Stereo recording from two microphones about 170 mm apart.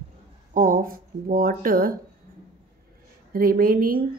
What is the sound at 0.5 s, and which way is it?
Speech, 50° right (ahead or behind).